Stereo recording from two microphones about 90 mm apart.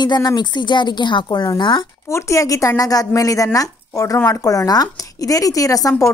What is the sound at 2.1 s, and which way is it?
Speech, 35° left (ahead or behind).